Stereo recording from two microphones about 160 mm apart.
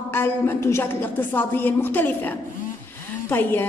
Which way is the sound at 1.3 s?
10° left (ahead or behind).